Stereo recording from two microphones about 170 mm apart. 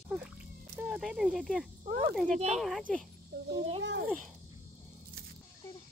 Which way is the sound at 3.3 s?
75° right (ahead or behind).